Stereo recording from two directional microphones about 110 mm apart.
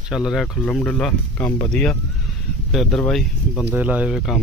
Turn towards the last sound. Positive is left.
turn(degrees=-15)  # may be behind; listen again after turning